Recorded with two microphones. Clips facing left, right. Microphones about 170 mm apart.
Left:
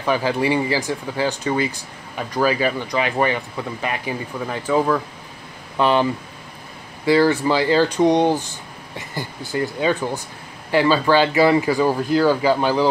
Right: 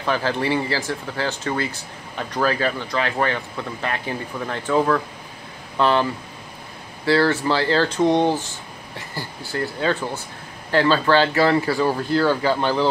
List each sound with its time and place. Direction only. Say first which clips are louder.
0.0 s speech: left 3 dB; 10° left (ahead or behind)
7.1 s speech: left 2 dB; 15° left (ahead or behind)